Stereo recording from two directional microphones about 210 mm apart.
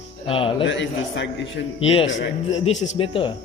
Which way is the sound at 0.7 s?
60° left (ahead or behind).